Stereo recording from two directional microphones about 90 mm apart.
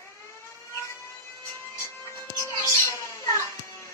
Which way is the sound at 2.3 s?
35° left (ahead or behind).